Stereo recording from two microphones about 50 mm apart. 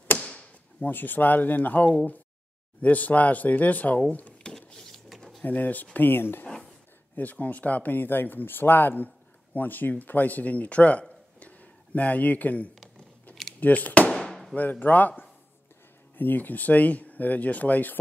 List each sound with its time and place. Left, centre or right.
0.2 s chop: centre
0.7 s speech: left
4.4 s a sound: centre
5.4 s speech: left
5.9 s speech: left
7.2 s speech: left
12.8 s a sound: centre
13.6 s speech: left
14.0 s firecracker: centre
14.5 s speech: left